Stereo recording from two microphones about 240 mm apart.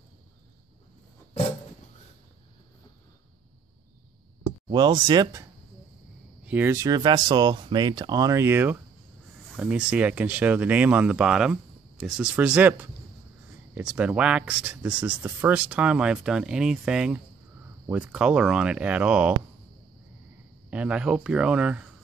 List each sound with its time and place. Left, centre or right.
4.6 s speech: centre
6.4 s speech: centre
20.7 s speech: centre